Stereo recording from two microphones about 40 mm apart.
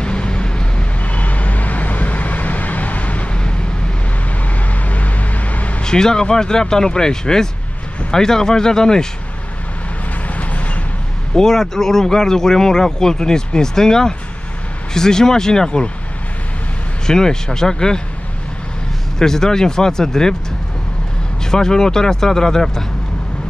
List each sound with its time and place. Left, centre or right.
0.0 s vehicle: left
1.0 s vehicle: left
3.3 s vehicle: left
4.6 s vehicle: left
5.8 s speech: centre
10.2 s vehicle: left
11.3 s speech: centre
17.0 s speech: centre
19.1 s speech: centre
21.5 s speech: centre